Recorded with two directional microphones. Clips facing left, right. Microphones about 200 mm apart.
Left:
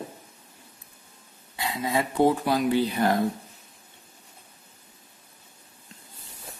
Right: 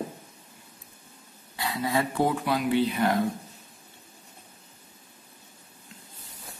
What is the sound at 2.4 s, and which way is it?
Speech, 40° left (ahead or behind).